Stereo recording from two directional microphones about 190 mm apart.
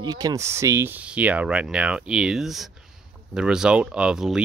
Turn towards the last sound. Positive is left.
turn(degrees=-5)  # may be behind; listen again after turning